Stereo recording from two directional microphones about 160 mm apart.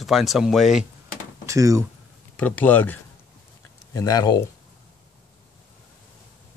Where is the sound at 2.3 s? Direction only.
10° left (ahead or behind).